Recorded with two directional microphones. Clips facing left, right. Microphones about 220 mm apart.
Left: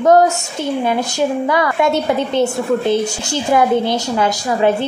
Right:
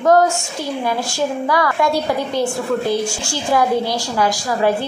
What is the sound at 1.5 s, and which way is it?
A woman's voice, 20° left (ahead or behind).